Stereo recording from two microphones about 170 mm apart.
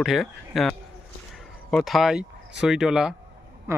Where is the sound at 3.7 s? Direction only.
15° right (ahead or behind).